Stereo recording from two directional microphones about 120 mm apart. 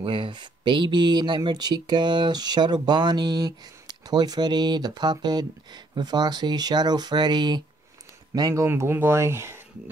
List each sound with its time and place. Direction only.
0.0 s speech: 45° right (ahead or behind)
8.6 s speech: 20° right (ahead or behind)